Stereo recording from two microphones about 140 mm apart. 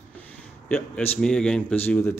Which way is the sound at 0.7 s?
10° left (ahead or behind).